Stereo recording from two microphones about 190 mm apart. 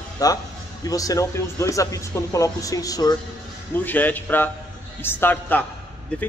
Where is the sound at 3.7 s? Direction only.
10° left (ahead or behind).